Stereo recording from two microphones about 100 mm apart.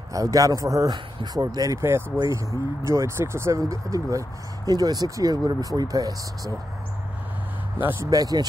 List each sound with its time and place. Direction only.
0.1 s speech: 35° right (ahead or behind)
8.0 s speech: 35° right (ahead or behind)